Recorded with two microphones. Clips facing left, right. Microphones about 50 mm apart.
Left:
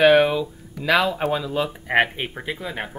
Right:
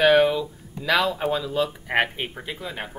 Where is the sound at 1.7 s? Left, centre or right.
Centre.